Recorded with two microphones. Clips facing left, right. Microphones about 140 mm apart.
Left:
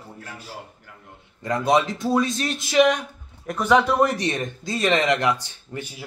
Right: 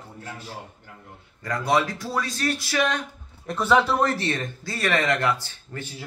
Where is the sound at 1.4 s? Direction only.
20° left (ahead or behind).